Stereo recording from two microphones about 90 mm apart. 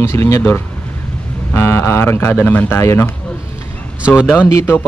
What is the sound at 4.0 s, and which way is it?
Speech, 15° right (ahead or behind).